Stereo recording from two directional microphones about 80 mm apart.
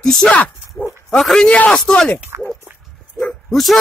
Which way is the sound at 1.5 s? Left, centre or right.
Centre.